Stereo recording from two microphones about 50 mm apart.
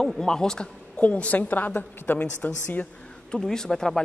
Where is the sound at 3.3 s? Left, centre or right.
Centre.